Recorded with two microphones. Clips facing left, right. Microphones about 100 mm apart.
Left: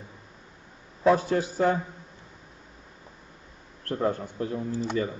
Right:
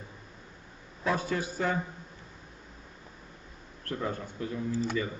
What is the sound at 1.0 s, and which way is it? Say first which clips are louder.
Speech: left 8 dB; 45° left (ahead or behind).